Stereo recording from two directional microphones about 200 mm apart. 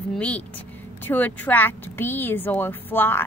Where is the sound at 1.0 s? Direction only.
10° left (ahead or behind).